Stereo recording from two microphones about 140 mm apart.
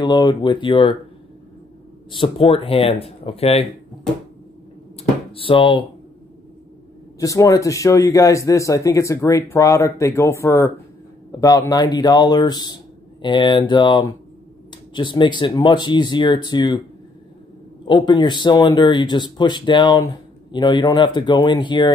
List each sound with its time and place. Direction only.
0.0 s speech: 30° left (ahead or behind)
2.0 s speech: 35° left (ahead or behind)
5.3 s speech: 40° left (ahead or behind)
7.2 s speech: 25° left (ahead or behind)
17.8 s speech: 35° left (ahead or behind)